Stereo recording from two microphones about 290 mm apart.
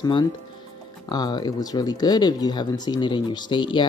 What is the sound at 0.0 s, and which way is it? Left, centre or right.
Speech, centre.